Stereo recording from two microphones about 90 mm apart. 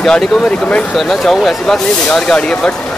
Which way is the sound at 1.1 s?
5° left (ahead or behind).